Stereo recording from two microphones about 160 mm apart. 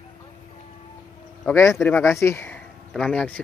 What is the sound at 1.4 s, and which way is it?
Speech, 15° left (ahead or behind).